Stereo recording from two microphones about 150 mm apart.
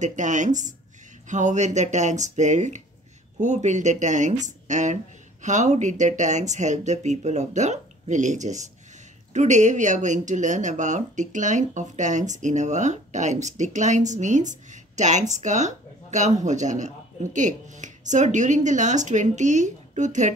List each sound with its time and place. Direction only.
0.0 s speech: 55° right (ahead or behind)